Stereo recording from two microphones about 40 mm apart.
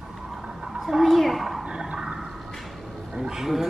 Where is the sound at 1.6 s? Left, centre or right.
Centre.